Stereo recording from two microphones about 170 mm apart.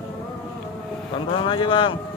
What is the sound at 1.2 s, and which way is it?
Vehicle, 30° left (ahead or behind).